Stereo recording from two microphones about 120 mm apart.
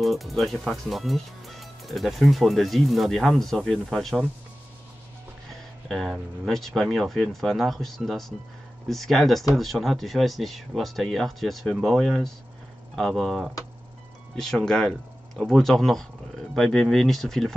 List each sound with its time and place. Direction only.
0.0 s speech: centre (ahead or behind)
5.9 s speech: centre (ahead or behind)